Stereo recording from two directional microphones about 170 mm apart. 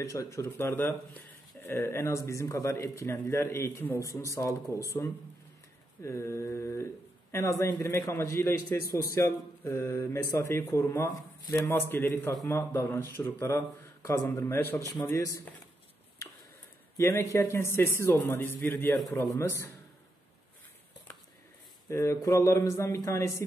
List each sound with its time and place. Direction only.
0.0 s speech: 20° left (ahead or behind)
6.0 s speech: 15° left (ahead or behind)
16.9 s speech: 15° left (ahead or behind)
21.8 s speech: 15° left (ahead or behind)